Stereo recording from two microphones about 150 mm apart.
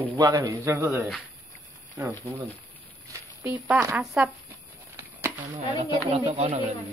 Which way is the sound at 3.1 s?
10° right (ahead or behind).